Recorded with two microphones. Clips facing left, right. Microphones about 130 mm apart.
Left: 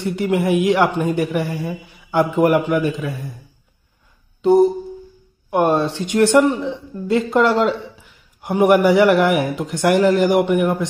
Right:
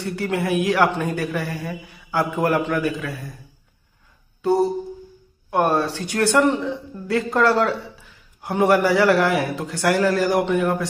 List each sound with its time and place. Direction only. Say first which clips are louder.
0.0 s a man's voice: left 5 dB; 15° left (ahead or behind)
4.4 s a sound: left 6 dB; 15° left (ahead or behind)
5.5 s a woman's voice: left 3 dB; 15° left (ahead or behind)